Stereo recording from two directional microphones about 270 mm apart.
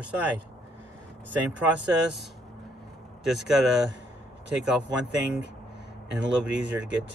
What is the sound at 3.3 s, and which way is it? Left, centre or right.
Speech, centre.